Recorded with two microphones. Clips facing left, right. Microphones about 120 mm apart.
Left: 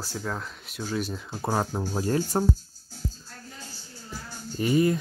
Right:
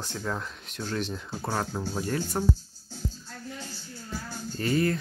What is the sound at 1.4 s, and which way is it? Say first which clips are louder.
Speech: left 4 dB; 15° left (ahead or behind).